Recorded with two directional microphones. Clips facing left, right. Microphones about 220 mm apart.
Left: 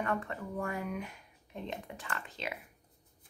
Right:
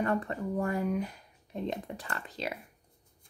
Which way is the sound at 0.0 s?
35° right (ahead or behind).